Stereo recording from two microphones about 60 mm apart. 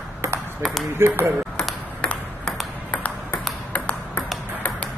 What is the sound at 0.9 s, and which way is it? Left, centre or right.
Speech, right.